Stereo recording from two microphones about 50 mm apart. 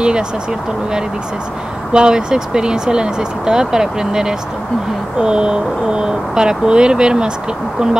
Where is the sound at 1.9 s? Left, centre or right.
Centre.